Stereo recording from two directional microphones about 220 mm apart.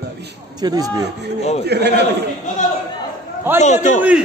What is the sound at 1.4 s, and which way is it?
Speech, 30° left (ahead or behind).